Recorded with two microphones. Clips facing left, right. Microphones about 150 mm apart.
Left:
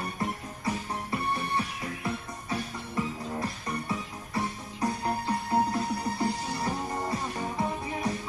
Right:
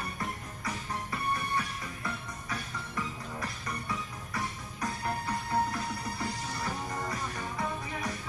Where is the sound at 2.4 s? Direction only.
30° left (ahead or behind).